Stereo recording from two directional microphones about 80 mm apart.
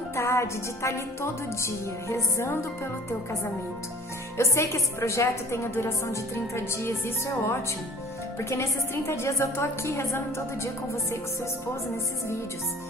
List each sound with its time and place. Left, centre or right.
0.1 s a woman's voice: left
4.4 s a woman's voice: left